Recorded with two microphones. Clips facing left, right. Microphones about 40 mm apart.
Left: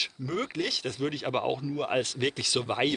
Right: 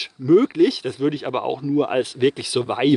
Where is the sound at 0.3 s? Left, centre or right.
Centre.